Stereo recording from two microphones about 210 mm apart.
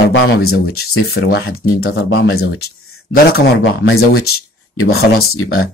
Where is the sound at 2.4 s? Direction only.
50° left (ahead or behind).